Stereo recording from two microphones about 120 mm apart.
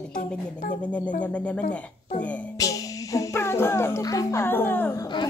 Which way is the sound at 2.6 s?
25° left (ahead or behind).